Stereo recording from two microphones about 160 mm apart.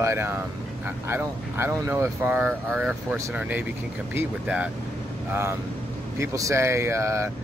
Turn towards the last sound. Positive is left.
turn(degrees=-15)  # may be behind; listen again after turning